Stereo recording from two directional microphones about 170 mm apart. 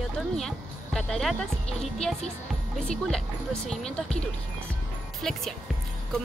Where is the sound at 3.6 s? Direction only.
5° left (ahead or behind).